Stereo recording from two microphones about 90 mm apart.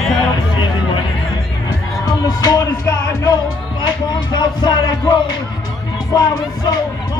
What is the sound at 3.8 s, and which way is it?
Speech, 55° left (ahead or behind).